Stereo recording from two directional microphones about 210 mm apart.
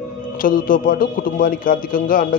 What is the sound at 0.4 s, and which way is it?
Speech, 40° left (ahead or behind).